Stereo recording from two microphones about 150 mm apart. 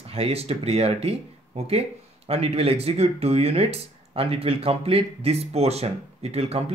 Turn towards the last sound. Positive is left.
turn(degrees=-40)  # may be behind; listen again after turning